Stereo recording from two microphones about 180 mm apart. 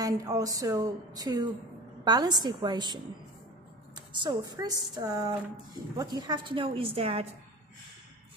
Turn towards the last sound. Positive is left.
turn(degrees=-35)  # may be behind; listen again after turning